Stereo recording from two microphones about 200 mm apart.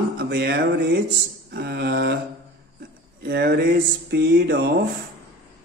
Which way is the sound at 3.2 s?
55° right (ahead or behind).